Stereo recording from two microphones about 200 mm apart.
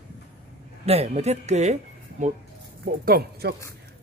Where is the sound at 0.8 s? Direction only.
30° right (ahead or behind).